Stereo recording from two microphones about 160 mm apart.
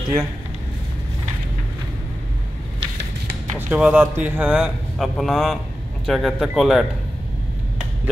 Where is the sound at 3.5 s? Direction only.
10° right (ahead or behind).